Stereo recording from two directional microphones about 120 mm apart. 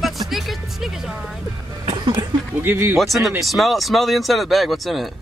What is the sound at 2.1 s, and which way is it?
Speech, 20° right (ahead or behind).